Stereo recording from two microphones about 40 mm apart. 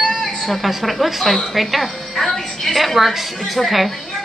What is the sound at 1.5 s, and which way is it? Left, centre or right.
A woman's voice, centre.